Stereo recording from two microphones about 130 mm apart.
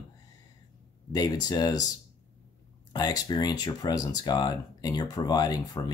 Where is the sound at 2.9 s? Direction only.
30° left (ahead or behind).